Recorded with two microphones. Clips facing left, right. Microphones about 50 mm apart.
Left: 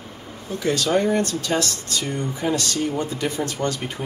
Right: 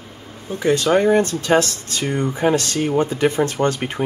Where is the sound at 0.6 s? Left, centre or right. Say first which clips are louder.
Right 5 dB; right.